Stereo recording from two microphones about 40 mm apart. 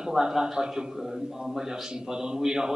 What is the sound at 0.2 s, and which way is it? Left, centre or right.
A man's voice, centre.